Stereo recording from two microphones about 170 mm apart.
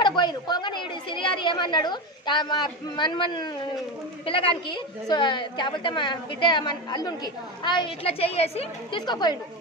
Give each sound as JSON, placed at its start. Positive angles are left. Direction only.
{"t": 0.0, "sound": "a woman's voice", "side_deg": 25}
{"t": 9.0, "sound": "a woman's voice", "side_deg": 25}